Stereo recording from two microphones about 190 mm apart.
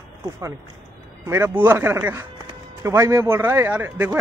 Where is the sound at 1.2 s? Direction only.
15° right (ahead or behind).